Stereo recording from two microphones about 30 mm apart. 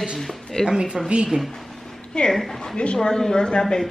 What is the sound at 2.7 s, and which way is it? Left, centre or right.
Speech, left.